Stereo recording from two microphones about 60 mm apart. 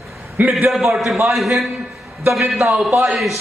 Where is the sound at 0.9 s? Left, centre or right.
Centre.